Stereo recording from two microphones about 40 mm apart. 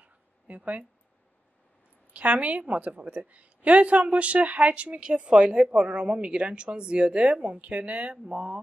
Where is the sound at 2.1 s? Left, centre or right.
Right.